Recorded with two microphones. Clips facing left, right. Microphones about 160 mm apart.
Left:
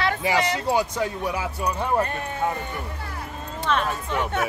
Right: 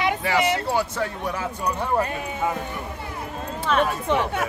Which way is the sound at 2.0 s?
5° right (ahead or behind).